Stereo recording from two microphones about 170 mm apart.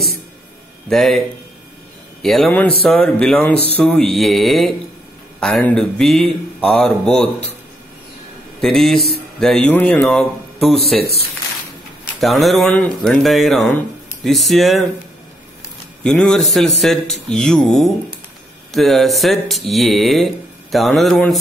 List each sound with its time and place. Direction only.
0.8 s speech: centre (ahead or behind)
2.2 s speech: centre (ahead or behind)
8.5 s speech: centre (ahead or behind)
12.2 s speech: centre (ahead or behind)
16.0 s speech: 5° left (ahead or behind)